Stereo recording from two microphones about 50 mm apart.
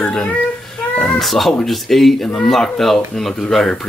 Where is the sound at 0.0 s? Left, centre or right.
Centre.